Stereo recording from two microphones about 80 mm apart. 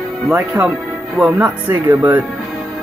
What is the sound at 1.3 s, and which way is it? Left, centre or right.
Speech, right.